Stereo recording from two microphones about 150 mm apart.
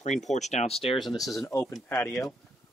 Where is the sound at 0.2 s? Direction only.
50° left (ahead or behind).